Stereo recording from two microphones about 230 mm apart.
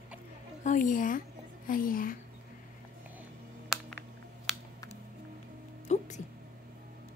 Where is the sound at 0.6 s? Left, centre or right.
Left.